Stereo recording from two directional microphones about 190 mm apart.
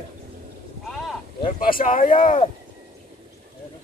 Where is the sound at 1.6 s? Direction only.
45° left (ahead or behind).